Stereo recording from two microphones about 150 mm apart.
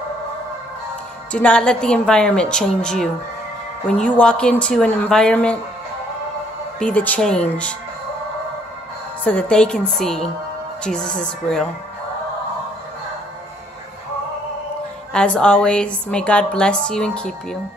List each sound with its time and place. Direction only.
1.3 s a woman's voice: 5° left (ahead or behind)
6.8 s a woman's voice: 10° left (ahead or behind)
9.2 s a woman's voice: 10° left (ahead or behind)
15.1 s a woman's voice: 5° left (ahead or behind)